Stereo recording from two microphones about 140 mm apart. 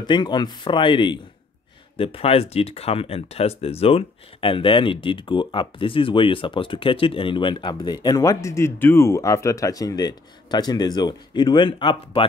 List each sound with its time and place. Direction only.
0.0 s speech: 30° left (ahead or behind)